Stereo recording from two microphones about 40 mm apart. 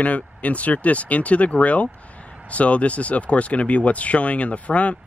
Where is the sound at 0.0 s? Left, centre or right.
Left.